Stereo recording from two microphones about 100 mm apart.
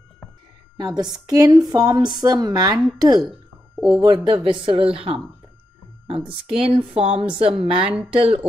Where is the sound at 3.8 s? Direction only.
10° right (ahead or behind).